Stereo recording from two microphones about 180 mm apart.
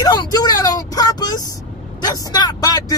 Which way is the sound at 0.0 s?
20° left (ahead or behind).